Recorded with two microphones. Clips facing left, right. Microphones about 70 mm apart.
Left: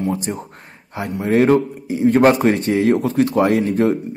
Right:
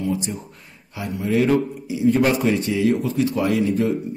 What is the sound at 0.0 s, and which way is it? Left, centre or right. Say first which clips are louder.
A man's voice: left 3 dB; left.